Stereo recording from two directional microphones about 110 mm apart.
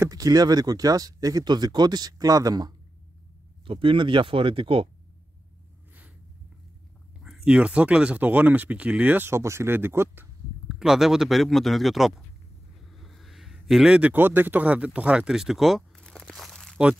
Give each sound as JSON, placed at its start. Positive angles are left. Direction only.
{"t": 0.0, "sound": "speech", "side_deg": -30}
{"t": 3.6, "sound": "speech", "side_deg": -50}
{"t": 7.2, "sound": "speech", "side_deg": -5}
{"t": 10.7, "sound": "a man's voice", "side_deg": -5}